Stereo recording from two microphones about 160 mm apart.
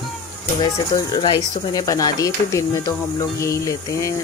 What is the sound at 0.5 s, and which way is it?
Speech, 25° left (ahead or behind).